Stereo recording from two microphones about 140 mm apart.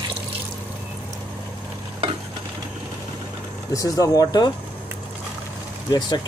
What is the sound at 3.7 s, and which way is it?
Speech, 25° left (ahead or behind).